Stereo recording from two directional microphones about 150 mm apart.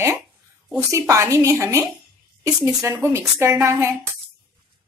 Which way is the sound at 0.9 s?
20° right (ahead or behind).